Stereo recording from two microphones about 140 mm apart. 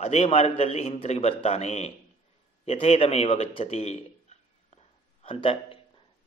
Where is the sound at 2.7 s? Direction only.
45° left (ahead or behind).